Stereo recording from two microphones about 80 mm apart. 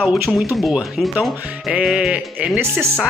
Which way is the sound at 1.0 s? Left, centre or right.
Centre.